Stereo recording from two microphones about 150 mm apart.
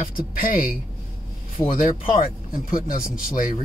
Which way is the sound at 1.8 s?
65° left (ahead or behind).